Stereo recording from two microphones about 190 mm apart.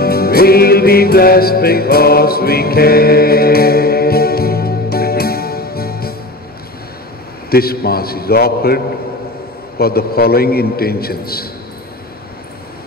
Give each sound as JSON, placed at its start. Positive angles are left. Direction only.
{"t": 0.0, "sound": "music", "side_deg": 55}
{"t": 7.5, "sound": "a man's voice", "side_deg": 55}